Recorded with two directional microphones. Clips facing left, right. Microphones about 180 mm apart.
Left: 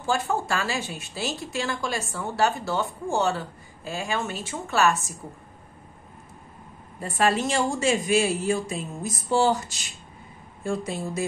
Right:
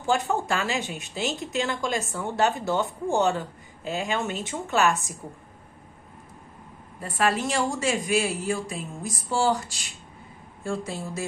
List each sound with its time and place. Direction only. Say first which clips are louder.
0.0 s speech: right 1 dB; 15° right (ahead or behind)
7.0 s a woman's voice: left 2 dB; 25° left (ahead or behind)